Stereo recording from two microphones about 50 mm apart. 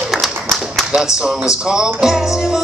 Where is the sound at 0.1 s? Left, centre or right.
Centre.